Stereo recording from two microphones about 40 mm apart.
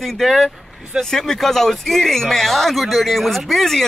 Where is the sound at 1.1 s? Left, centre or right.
Centre.